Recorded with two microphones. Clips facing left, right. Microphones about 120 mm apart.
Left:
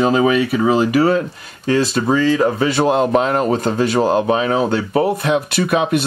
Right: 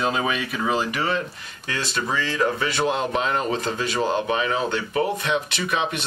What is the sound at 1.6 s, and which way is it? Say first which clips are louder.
Speech: left 11 dB; 35° left (ahead or behind).